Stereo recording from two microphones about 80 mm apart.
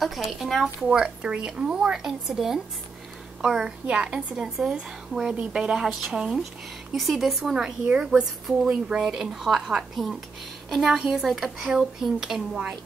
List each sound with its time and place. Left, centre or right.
0.0 s a woman's voice: centre